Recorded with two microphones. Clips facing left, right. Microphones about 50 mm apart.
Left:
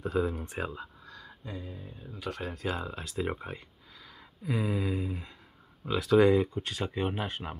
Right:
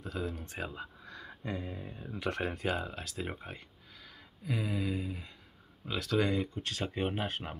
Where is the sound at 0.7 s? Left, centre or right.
Right.